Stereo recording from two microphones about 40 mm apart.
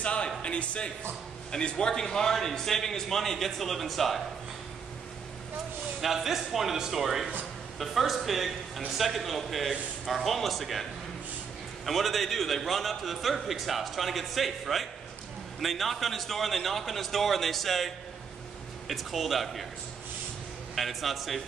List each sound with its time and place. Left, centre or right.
0.0 s a sound: left
0.4 s a man's voice: left; by 4.2 s centre
5.9 s a man's voice: centre
20.7 s a man's voice: centre